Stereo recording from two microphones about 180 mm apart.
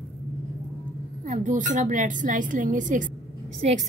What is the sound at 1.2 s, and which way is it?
Speech, 45° right (ahead or behind).